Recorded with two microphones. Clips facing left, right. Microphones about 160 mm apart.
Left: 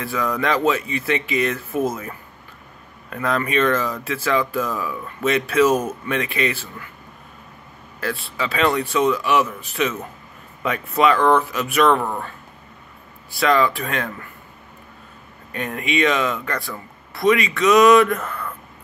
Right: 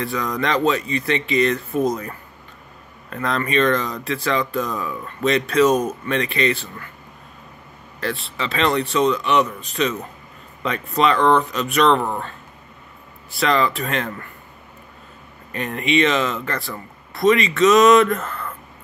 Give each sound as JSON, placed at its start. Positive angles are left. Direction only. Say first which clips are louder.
{"t": 0.0, "sound": "speech", "louder": "even", "side_deg": 5}
{"t": 8.0, "sound": "speech", "louder": "even", "side_deg": 0}
{"t": 11.1, "sound": "speech", "louder": "even", "side_deg": -20}
{"t": 11.5, "sound": "speech", "louder": "even", "side_deg": 5}
{"t": 13.3, "sound": "speech", "louder": "left 1 dB", "side_deg": 0}
{"t": 15.5, "sound": "speech", "louder": "right 3 dB", "side_deg": 0}